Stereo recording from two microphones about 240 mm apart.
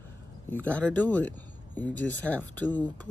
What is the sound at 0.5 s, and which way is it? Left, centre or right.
Speech, centre.